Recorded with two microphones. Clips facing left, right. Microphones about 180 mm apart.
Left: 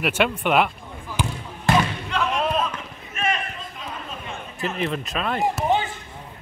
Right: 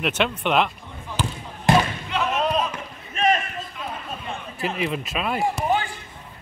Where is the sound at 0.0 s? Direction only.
10° left (ahead or behind).